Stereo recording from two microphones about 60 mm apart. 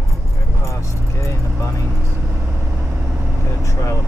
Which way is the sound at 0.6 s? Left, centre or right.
Left.